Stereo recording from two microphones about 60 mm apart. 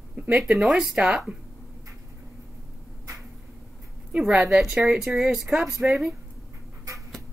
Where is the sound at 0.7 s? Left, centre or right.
Centre.